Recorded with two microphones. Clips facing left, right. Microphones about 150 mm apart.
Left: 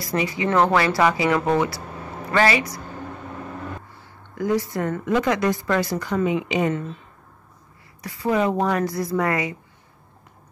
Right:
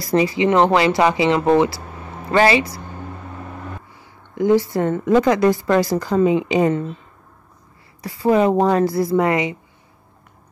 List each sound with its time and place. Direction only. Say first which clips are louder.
0.0 s a woman's voice: right 7 dB; 30° right (ahead or behind)
4.4 s a woman's voice: right 6 dB; 25° right (ahead or behind)
8.0 s a woman's voice: right 6 dB; 30° right (ahead or behind)